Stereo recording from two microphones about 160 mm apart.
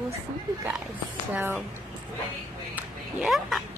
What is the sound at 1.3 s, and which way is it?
Speech, 10° right (ahead or behind).